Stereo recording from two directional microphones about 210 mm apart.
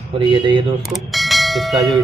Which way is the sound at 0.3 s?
20° right (ahead or behind).